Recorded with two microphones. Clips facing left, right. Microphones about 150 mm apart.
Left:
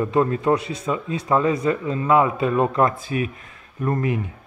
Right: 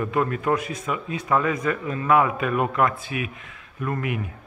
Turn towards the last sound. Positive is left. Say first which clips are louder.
# left 4 dB
turn(degrees=30)  # may be behind; listen again after turning